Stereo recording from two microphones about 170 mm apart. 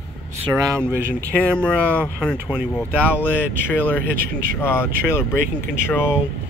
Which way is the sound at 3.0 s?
10° left (ahead or behind).